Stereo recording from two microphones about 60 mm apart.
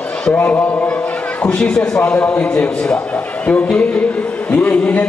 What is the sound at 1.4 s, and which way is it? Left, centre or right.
A man's voice, centre.